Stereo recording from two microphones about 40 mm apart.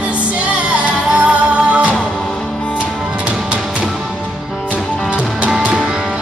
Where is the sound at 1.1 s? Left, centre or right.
Right.